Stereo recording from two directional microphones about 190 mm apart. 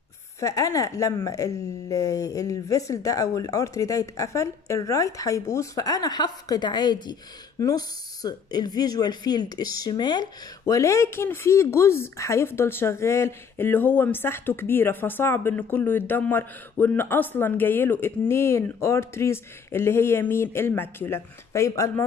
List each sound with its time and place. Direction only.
0.4 s speech: 15° left (ahead or behind)